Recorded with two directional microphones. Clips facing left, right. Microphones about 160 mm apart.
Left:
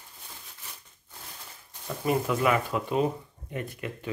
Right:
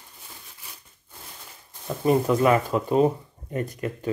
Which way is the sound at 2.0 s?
35° right (ahead or behind).